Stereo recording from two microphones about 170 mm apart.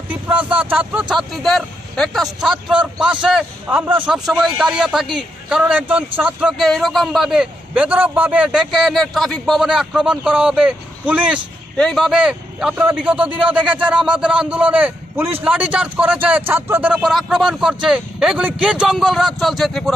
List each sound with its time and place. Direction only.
0.1 s speech: 10° right (ahead or behind)
11.7 s speech: 5° left (ahead or behind)